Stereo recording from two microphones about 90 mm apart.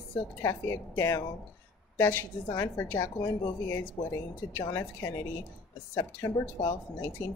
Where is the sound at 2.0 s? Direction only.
25° left (ahead or behind).